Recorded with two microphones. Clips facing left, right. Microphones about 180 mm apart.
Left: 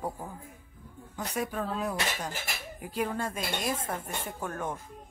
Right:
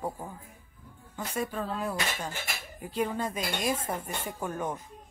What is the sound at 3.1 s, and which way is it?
A woman's voice, 5° right (ahead or behind).